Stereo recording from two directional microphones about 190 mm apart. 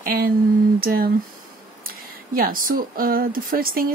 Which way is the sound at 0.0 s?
50° right (ahead or behind).